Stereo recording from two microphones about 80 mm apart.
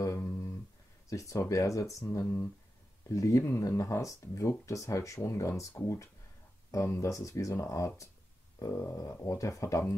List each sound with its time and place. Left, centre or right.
0.0 s humming: left
1.0 s speech: left